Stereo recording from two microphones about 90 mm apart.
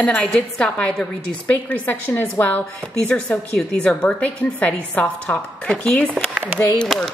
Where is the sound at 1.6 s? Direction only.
25° left (ahead or behind); by 7.1 s centre (ahead or behind).